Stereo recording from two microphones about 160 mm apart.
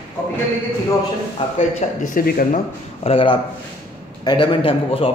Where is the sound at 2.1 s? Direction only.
60° left (ahead or behind).